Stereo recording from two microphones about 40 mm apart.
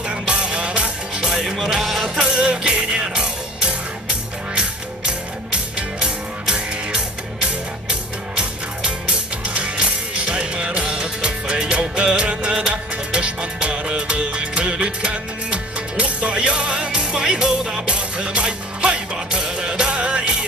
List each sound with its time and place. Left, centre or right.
0.1 s music: right
1.2 s music: centre
2.0 s music: centre